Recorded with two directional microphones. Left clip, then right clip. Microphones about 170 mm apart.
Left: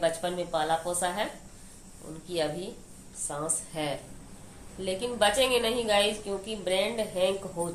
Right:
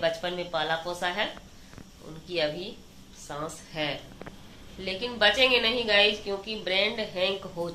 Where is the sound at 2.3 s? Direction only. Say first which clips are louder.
Right 2 dB; 5° left (ahead or behind).